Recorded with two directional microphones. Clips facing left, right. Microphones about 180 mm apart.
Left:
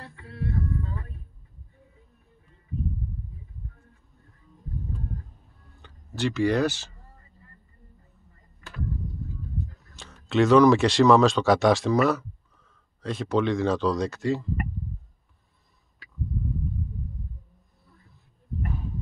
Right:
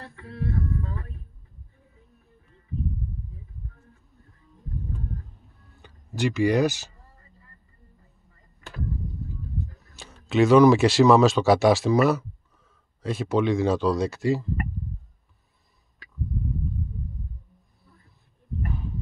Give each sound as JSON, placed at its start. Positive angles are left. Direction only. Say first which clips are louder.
{"t": 0.0, "sound": "a sound", "louder": "right 3 dB", "side_deg": -45}
{"t": 5.8, "sound": "speech", "louder": "right 2 dB", "side_deg": -10}
{"t": 9.9, "sound": "speech", "louder": "right 1 dB", "side_deg": -5}